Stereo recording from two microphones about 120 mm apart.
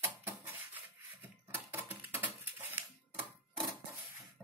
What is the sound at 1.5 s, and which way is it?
Typewriter, 15° right (ahead or behind).